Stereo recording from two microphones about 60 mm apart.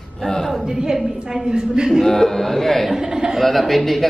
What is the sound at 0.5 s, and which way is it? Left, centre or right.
A woman's voice, centre.